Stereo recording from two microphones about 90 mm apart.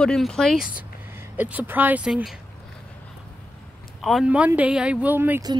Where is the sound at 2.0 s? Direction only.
5° right (ahead or behind).